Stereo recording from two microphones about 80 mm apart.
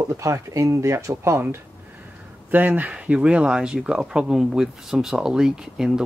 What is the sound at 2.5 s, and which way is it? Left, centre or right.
Speech, centre.